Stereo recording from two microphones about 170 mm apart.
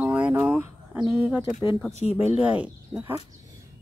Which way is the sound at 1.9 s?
40° left (ahead or behind).